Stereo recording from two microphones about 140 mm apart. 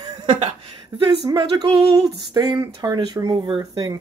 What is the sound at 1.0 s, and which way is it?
Speech, 30° right (ahead or behind).